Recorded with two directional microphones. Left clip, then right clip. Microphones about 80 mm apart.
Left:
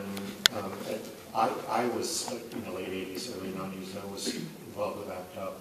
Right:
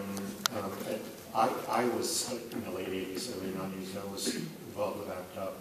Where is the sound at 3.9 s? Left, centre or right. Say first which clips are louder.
Even; centre.